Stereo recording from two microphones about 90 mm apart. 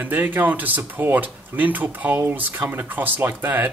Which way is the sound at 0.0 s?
20° right (ahead or behind).